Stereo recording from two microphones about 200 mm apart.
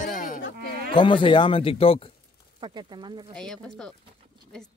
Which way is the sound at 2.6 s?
20° right (ahead or behind).